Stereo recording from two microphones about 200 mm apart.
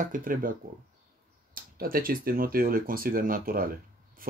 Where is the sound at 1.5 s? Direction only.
45° right (ahead or behind).